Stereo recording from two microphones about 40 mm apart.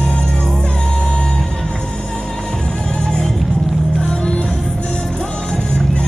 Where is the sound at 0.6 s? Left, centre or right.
Left.